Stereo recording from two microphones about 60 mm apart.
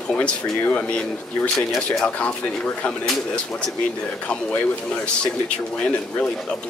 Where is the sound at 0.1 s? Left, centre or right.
Left.